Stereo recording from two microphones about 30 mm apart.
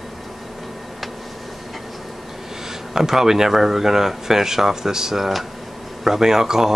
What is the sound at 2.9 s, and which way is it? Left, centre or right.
Speech, centre.